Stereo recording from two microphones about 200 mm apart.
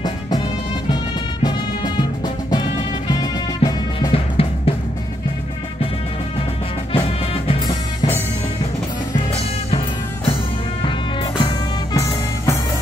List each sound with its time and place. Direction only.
1.4 s music: 25° left (ahead or behind)
3.1 s drum kit: 20° left (ahead or behind)
7.4 s music: 20° left (ahead or behind)
9.7 s music: 30° left (ahead or behind)